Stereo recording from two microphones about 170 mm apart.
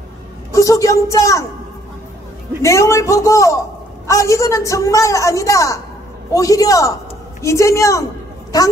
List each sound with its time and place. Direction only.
0.5 s a woman's voice: 20° left (ahead or behind)
2.6 s a man's voice: 15° left (ahead or behind)